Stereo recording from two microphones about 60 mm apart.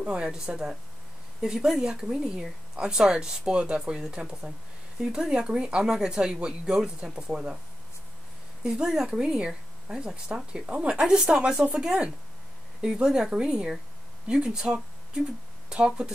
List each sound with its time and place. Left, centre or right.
0.0 s speech: centre
8.6 s speech: centre
11.0 s speech: centre